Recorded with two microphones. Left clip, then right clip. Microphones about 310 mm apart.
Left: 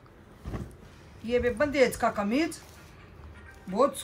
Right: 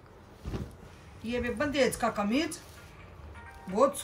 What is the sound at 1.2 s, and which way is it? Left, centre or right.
A woman's voice, centre.